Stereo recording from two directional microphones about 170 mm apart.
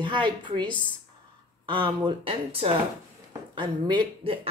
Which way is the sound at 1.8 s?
30° right (ahead or behind).